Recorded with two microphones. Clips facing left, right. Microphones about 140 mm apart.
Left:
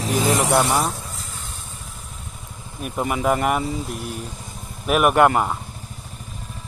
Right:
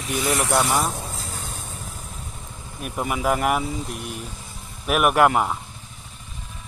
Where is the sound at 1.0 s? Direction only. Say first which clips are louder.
Right 3 dB; 35° right (ahead or behind).